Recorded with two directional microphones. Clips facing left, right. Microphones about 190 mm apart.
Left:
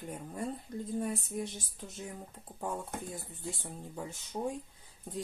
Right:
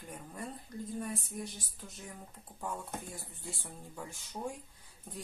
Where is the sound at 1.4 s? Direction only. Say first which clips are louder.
Left 3 dB; 25° left (ahead or behind).